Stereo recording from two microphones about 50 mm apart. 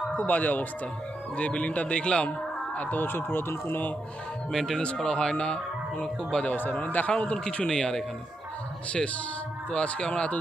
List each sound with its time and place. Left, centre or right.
0.1 s a man's voice: left
4.5 s speech: centre
4.7 s speech: centre
6.5 s a man's voice: left; by 8.0 s centre
9.7 s a man's voice: left